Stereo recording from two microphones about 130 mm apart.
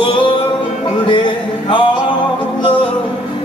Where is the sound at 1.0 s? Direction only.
35° left (ahead or behind).